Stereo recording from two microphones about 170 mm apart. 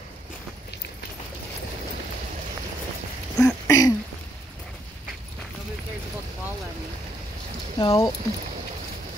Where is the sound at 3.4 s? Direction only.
20° left (ahead or behind).